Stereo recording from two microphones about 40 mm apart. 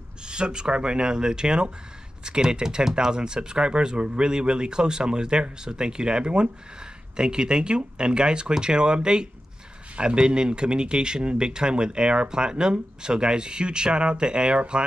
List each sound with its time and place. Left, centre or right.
0.2 s speech: right